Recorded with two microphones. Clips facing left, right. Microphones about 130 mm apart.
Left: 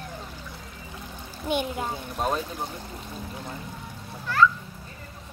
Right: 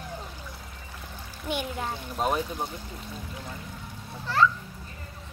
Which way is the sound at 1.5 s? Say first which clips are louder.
Left 4 dB; 20° left (ahead or behind).